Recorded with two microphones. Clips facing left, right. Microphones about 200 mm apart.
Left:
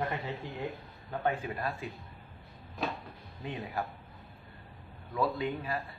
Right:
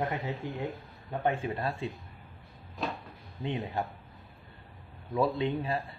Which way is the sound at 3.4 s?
25° right (ahead or behind).